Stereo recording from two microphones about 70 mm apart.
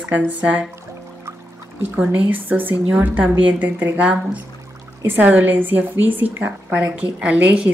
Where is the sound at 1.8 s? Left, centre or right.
Right.